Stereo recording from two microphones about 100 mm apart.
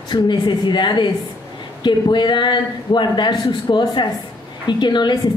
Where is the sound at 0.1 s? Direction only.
50° left (ahead or behind).